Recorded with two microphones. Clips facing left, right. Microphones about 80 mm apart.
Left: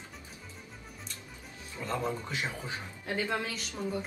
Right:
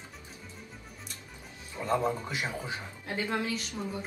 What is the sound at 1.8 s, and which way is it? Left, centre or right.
Speech, centre.